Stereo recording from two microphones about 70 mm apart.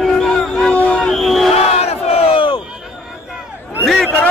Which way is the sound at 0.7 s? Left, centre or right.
Left.